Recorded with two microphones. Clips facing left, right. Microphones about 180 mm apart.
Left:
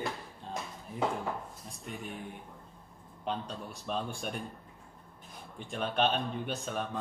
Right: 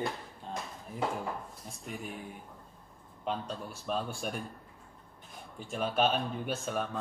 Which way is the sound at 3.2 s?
Centre (ahead or behind).